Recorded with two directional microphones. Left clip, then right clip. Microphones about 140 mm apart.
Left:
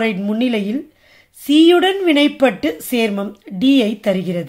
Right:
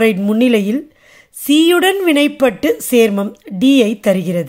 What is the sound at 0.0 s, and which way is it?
Speech, 40° right (ahead or behind).